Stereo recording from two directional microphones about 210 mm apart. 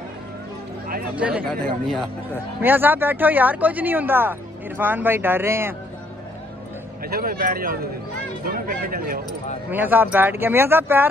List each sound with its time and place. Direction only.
1.1 s speech: 5° right (ahead or behind)
1.5 s speech: 5° left (ahead or behind)
2.6 s speech: 10° right (ahead or behind)
7.0 s a man's voice: 45° right (ahead or behind)
9.7 s speech: 10° right (ahead or behind)